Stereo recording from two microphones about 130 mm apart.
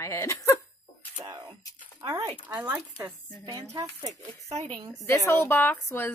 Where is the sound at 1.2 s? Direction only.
35° right (ahead or behind).